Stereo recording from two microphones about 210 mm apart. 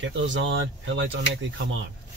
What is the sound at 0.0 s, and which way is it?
Speech, 60° right (ahead or behind).